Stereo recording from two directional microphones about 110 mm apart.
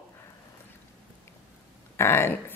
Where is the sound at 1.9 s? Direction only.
20° left (ahead or behind).